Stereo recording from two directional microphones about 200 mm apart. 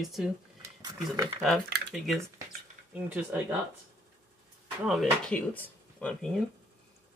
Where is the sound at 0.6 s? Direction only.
20° right (ahead or behind).